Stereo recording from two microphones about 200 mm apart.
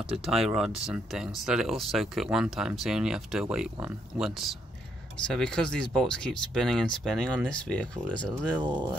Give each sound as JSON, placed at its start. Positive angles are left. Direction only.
{"t": 0.3, "sound": "speech", "side_deg": 0}